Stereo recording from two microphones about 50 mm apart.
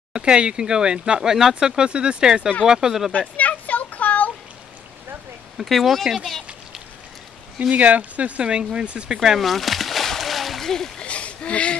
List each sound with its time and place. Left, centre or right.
0.1 s speech: centre
3.1 s a sound: left
5.6 s speech: centre
7.7 s speech: right
9.2 s splash: centre
11.0 s a sound: left